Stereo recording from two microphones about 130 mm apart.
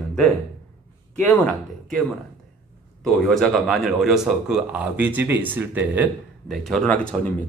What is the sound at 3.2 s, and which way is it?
Speech, 5° left (ahead or behind).